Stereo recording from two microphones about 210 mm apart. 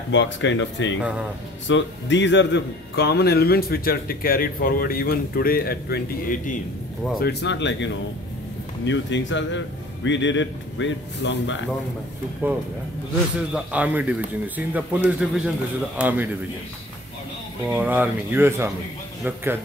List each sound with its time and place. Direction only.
0.1 s a man's voice: 60° left (ahead or behind)
12.4 s a man's voice: 10° right (ahead or behind)
17.6 s speech: 10° right (ahead or behind)